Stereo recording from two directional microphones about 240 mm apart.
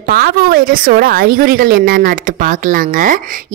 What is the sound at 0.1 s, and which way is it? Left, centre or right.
A woman's voice, right.